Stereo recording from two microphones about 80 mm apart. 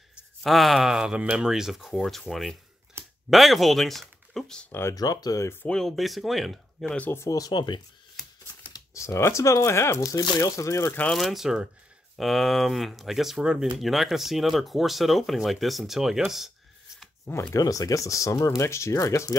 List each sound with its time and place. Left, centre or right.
0.4 s speech: centre
4.6 s speech: left
4.9 s speech: left
5.4 s speech: left
5.7 s speech: centre
7.2 s speech: left
8.9 s speech: left
11.1 s speech: centre
16.3 s a sound: centre
17.3 s speech: left
17.6 s speech: left